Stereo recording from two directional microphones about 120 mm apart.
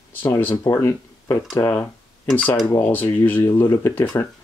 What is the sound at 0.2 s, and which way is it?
Speech, 15° left (ahead or behind).